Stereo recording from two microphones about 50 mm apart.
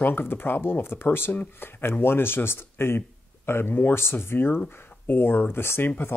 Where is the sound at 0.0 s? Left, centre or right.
Left.